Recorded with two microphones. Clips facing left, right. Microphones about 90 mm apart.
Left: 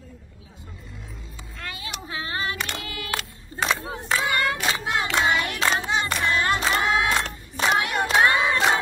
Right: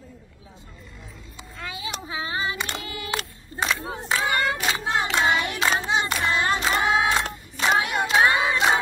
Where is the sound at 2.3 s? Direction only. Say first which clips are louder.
Even; 20° right (ahead or behind).